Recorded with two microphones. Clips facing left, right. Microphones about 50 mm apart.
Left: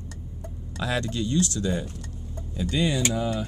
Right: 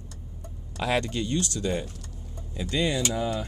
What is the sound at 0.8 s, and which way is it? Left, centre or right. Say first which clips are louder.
Speech: right 1 dB; right.